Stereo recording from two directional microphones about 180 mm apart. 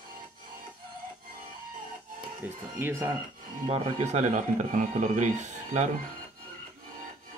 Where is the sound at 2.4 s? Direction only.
10° right (ahead or behind).